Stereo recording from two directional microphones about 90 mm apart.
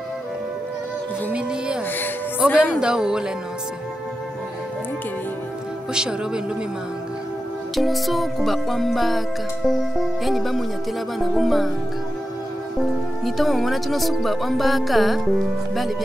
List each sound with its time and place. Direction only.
1.3 s music: 10° right (ahead or behind)
1.9 s speech: 20° left (ahead or behind)
2.8 s music: 10° right (ahead or behind)
5.9 s music: 10° right (ahead or behind)
7.7 s speech: centre (ahead or behind)
13.2 s speech: centre (ahead or behind)